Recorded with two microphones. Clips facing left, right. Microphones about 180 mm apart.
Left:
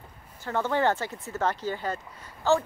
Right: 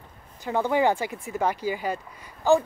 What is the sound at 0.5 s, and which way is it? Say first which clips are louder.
Speech: right 3 dB; 15° right (ahead or behind).